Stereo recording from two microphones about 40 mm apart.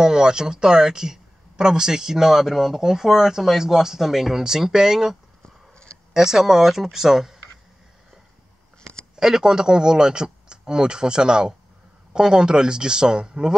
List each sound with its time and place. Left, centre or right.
0.0 s speech: centre
6.1 s speech: centre
9.1 s speech: centre